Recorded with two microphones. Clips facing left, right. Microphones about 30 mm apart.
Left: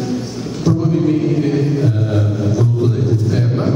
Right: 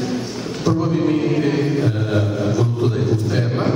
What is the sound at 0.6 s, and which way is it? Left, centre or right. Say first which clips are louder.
Speech: left 3 dB; centre.